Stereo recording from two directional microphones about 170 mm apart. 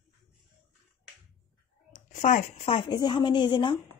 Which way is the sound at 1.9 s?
45° left (ahead or behind).